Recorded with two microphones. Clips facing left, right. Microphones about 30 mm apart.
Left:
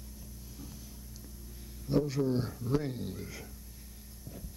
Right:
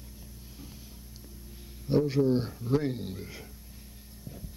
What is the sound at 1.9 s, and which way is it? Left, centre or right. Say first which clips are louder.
A man's voice: right 5 dB; right.